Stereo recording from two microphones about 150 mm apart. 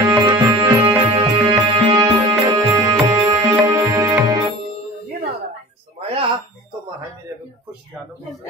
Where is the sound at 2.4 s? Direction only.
20° right (ahead or behind).